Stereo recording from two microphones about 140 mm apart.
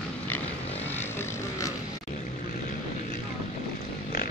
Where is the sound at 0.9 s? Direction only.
15° left (ahead or behind).